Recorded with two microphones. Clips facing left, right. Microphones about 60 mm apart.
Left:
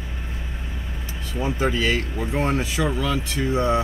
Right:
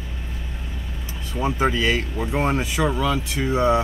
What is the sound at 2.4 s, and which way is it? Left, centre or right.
Speech, centre.